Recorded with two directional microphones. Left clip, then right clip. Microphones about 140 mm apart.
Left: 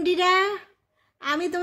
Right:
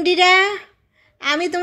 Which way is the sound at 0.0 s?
10° right (ahead or behind).